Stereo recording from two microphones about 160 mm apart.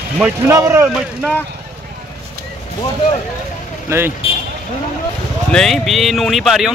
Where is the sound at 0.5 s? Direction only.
20° right (ahead or behind).